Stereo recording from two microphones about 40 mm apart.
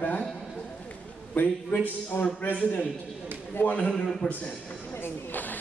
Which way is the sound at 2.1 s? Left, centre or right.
Left.